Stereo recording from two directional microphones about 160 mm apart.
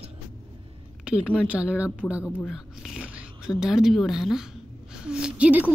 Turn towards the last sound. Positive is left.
turn(degrees=-10)  # may be behind; listen again after turning